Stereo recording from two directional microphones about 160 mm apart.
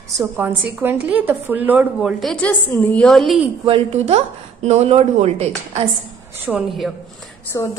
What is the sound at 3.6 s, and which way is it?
Speech, 35° right (ahead or behind).